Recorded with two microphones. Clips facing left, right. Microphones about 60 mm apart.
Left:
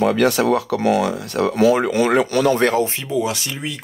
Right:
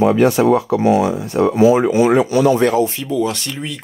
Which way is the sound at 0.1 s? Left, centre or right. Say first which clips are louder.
Right 4 dB; left.